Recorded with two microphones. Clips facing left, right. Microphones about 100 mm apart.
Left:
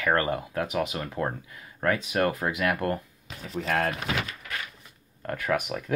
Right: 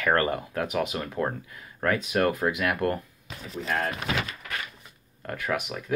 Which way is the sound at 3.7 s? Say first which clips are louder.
Left 2 dB; 65° left (ahead or behind).